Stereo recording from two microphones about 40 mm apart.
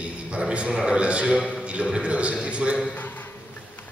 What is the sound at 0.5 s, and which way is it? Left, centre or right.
A man's voice, right.